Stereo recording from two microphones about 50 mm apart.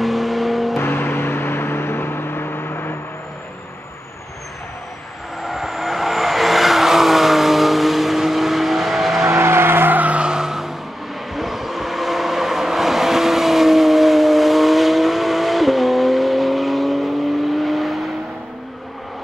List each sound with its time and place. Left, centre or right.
0.0 s vehicle: centre
0.7 s vehicle: left
2.7 s vehicle: left
5.4 s vehicle: centre
9.2 s vehicle: right
9.9 s vehicle: right; by 18.1 s centre